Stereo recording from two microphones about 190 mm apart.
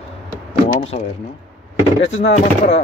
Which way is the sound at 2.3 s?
35° left (ahead or behind).